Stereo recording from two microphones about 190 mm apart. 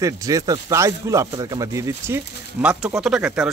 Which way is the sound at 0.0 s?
15° right (ahead or behind).